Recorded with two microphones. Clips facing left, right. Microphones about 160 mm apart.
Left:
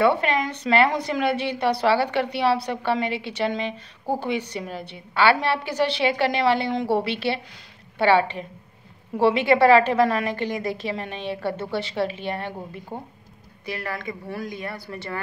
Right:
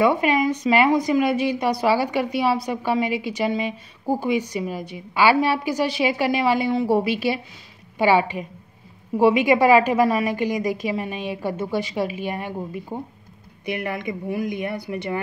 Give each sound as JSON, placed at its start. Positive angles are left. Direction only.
{"t": 0.1, "sound": "a woman's voice", "side_deg": -10}